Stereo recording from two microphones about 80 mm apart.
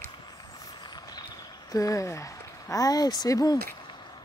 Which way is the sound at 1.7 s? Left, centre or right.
Left.